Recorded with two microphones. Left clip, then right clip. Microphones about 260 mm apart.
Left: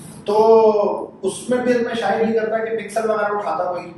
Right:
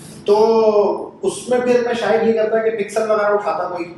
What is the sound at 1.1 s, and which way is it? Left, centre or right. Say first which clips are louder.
A man's voice: right 3 dB; centre.